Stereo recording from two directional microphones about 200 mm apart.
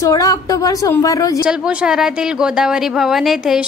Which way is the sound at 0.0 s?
15° left (ahead or behind).